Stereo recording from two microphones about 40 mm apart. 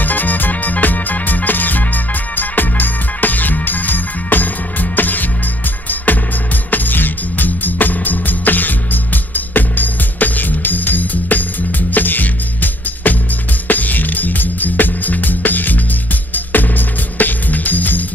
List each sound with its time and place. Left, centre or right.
0.0 s music: left